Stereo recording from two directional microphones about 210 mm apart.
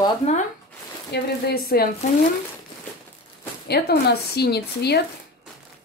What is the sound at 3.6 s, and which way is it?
A woman's voice, 50° left (ahead or behind).